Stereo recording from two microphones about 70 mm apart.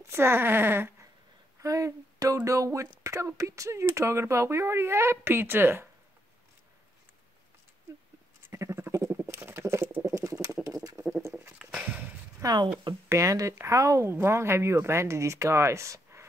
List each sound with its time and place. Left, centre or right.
0.0 s speech: right
1.6 s speech: right
8.5 s bird: right
10.0 s rodents: right
11.5 s a sound: centre
12.4 s speech: right
14.1 s speech: right